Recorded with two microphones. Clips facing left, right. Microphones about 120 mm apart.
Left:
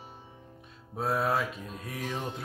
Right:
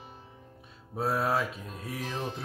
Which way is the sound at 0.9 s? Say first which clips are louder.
Even; centre (ahead or behind).